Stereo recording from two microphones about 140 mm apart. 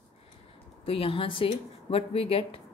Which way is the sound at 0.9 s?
40° left (ahead or behind).